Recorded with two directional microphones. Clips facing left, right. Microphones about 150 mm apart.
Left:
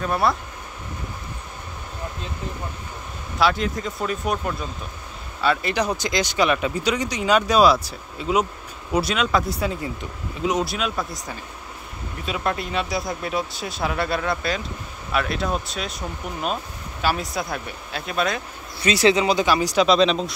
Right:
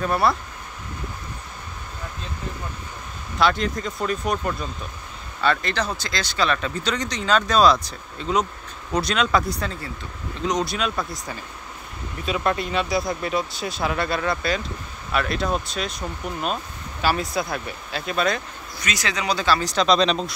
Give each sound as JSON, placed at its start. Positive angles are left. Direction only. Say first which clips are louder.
{"t": 0.1, "sound": "speech", "louder": "even", "side_deg": 0}
{"t": 3.3, "sound": "speech", "louder": "even", "side_deg": 5}
{"t": 5.4, "sound": "speech", "louder": "left 1 dB", "side_deg": 5}
{"t": 9.7, "sound": "speech", "louder": "left 5 dB", "side_deg": 15}
{"t": 10.4, "sound": "speech", "louder": "left 1 dB", "side_deg": 5}
{"t": 17.0, "sound": "speech", "louder": "right 1 dB", "side_deg": 0}
{"t": 18.8, "sound": "speech", "louder": "left 10 dB", "side_deg": 30}